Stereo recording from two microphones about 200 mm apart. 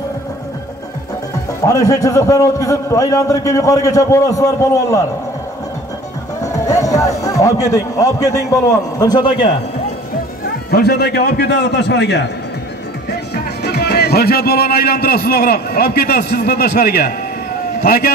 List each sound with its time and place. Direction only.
1.7 s a man's voice: 15° left (ahead or behind)
6.4 s music: 15° left (ahead or behind)
7.7 s a man's voice: 15° left (ahead or behind)
10.4 s a man's voice: 50° left (ahead or behind)